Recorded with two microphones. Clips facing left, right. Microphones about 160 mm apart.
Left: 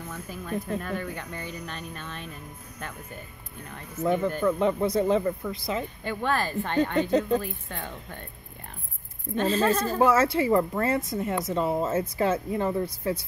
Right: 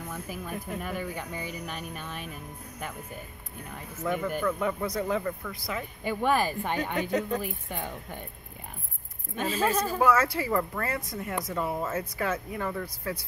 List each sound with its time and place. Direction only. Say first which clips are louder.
0.1 s speech: left 5 dB; 10° right (ahead or behind)
4.0 s a woman's voice: left 5 dB; 30° left (ahead or behind)
6.0 s speech: right 3 dB; 10° right (ahead or behind)
7.0 s a woman's voice: left 5 dB; 30° left (ahead or behind)
7.3 s speech: left 3 dB; 15° right (ahead or behind)
9.4 s speech: left 3 dB; 10° right (ahead or behind)
9.9 s a woman's voice: left 3 dB; 25° left (ahead or behind)